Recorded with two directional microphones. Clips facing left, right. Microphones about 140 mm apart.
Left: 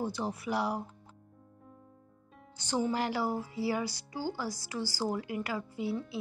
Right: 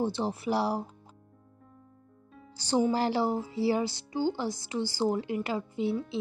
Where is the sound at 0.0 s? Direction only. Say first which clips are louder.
Right 5 dB; 30° right (ahead or behind).